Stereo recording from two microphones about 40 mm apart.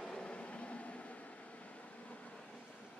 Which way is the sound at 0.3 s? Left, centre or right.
Left.